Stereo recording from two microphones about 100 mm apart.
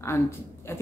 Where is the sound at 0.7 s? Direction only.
25° left (ahead or behind).